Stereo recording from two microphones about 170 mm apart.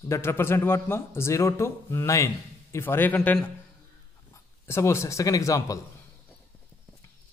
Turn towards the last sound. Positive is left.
turn(degrees=20)  # may be behind; listen again after turning